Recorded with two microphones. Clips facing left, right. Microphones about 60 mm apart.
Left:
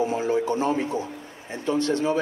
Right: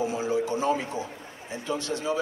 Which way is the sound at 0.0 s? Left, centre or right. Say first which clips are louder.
Left 3 dB; left.